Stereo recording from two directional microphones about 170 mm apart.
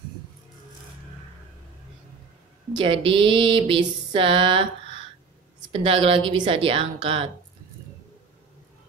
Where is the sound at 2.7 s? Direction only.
30° right (ahead or behind).